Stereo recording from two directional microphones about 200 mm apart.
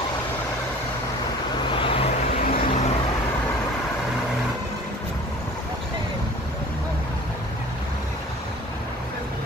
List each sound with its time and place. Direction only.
1.7 s vehicle: 25° left (ahead or behind)
2.4 s vehicle: 45° left (ahead or behind)